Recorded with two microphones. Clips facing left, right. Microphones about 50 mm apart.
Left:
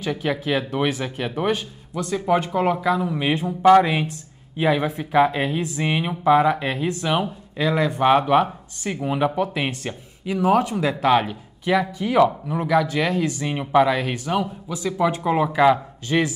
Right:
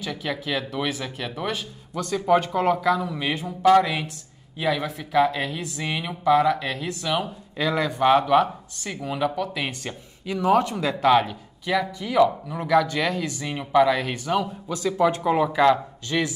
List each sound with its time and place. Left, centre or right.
0.0 s speech: left
2.0 s speech: centre
14.7 s speech: centre